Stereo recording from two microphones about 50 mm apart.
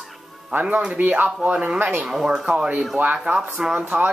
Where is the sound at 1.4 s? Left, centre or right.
Right.